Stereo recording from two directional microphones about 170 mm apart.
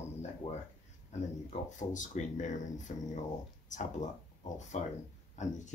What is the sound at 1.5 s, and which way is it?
Speech, 45° left (ahead or behind).